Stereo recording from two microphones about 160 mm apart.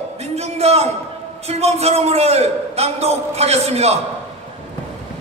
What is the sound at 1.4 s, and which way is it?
A man's voice, 40° right (ahead or behind).